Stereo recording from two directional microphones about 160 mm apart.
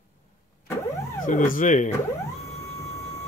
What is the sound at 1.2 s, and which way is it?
Speech, 60° left (ahead or behind).